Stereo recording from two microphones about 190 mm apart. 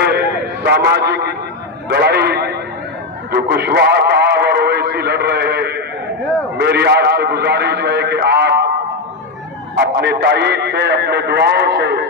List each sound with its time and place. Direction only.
0.0 s a sound: 60° right (ahead or behind)
3.3 s radio: 55° right (ahead or behind)
9.8 s a man's voice: 60° right (ahead or behind)